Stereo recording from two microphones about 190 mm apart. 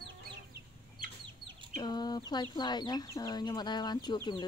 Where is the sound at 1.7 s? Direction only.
20° left (ahead or behind).